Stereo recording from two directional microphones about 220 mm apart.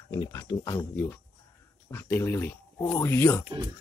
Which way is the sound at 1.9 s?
10° left (ahead or behind).